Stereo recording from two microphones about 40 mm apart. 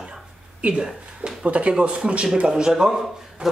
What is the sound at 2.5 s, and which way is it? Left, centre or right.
Speech, centre.